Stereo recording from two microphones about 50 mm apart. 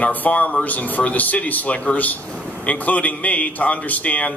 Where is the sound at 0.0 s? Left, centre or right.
Left.